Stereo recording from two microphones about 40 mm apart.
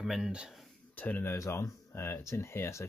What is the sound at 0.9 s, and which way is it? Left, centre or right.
Speech, left.